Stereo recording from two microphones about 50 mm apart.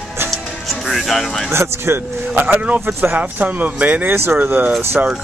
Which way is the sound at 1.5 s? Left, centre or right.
Right.